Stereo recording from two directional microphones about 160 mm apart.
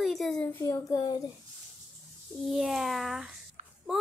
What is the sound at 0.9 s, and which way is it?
Speech, 25° left (ahead or behind).